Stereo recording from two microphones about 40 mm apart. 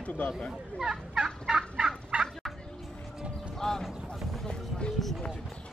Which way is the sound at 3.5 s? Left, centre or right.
Centre.